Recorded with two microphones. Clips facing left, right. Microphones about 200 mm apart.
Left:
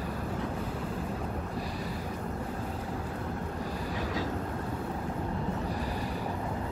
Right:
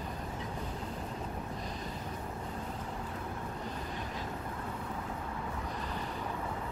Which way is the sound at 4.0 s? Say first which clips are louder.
Left 8 dB; 90° left.